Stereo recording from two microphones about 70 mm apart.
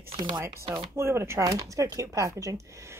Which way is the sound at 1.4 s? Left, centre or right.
Right.